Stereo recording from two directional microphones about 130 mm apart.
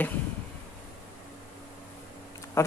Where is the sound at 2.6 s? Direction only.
20° left (ahead or behind).